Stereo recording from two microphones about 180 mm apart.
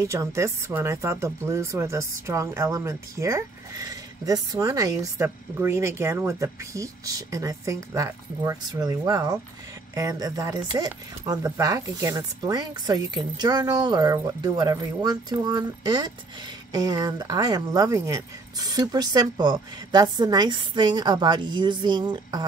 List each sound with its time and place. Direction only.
0.0 s speech: 15° right (ahead or behind)